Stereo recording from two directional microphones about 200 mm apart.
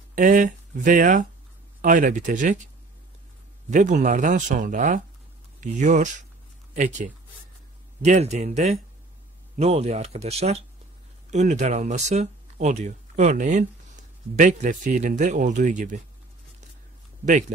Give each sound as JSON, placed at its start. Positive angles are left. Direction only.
{"t": 0.1, "sound": "speech", "side_deg": -40}
{"t": 3.7, "sound": "speech", "side_deg": -40}
{"t": 17.2, "sound": "speech", "side_deg": -40}